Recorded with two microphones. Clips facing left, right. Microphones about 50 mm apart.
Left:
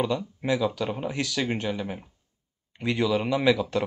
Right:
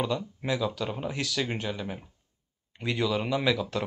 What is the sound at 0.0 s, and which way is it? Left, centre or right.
Speech, centre.